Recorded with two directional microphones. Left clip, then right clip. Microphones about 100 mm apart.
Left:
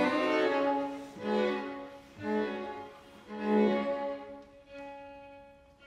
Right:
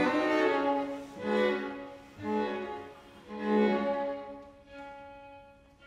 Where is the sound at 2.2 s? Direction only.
20° left (ahead or behind).